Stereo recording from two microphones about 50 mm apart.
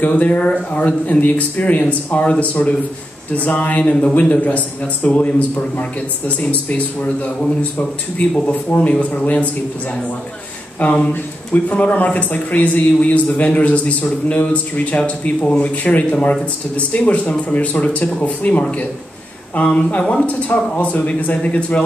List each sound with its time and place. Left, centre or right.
0.0 s a man's voice: left
8.6 s a man's voice: left